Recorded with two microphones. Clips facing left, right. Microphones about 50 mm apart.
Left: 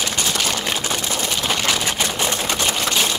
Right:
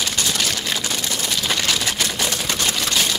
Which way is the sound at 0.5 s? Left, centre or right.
Left.